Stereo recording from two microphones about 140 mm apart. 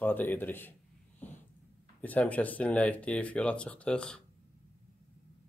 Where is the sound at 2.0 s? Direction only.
10° left (ahead or behind).